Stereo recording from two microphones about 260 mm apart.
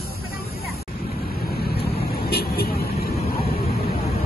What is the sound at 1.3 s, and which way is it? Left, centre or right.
Vehicle, left.